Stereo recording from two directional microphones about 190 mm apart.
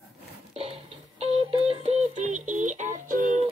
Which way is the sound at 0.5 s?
35° right (ahead or behind).